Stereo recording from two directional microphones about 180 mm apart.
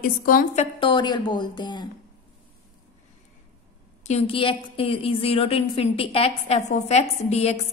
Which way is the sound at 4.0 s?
35° left (ahead or behind).